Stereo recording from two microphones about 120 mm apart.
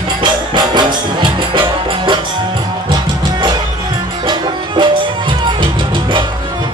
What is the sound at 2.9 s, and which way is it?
Music, 35° right (ahead or behind).